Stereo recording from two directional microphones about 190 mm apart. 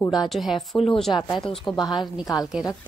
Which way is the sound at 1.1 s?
25° left (ahead or behind).